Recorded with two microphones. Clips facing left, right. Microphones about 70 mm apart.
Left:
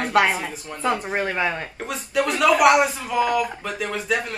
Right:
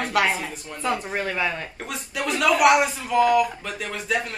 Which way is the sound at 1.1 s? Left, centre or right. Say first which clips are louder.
Left 2 dB; left.